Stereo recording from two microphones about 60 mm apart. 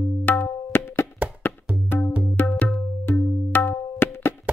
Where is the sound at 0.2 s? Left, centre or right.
Left.